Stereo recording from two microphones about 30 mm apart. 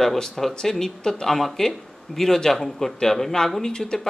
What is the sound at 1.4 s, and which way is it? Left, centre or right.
A man's voice, centre.